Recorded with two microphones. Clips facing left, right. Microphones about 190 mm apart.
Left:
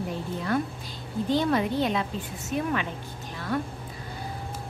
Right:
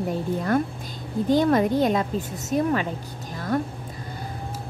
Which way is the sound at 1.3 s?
45° right (ahead or behind).